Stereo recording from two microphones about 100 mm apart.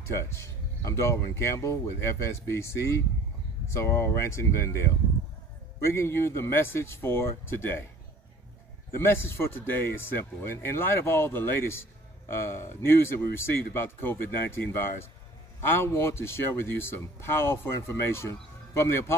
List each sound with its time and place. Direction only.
0.0 s a man's voice: 25° left (ahead or behind)
8.9 s a man's voice: 25° left (ahead or behind)